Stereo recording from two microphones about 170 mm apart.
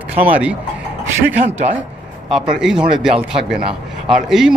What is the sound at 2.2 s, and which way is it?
Speech, 5° right (ahead or behind).